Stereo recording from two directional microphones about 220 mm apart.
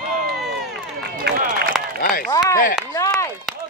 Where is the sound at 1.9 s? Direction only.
40° left (ahead or behind).